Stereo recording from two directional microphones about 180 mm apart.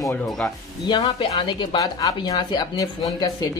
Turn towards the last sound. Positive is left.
turn(degrees=20)  # may be behind; listen again after turning